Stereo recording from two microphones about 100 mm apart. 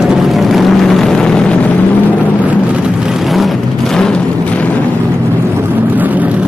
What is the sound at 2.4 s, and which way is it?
Vehicle, 10° right (ahead or behind).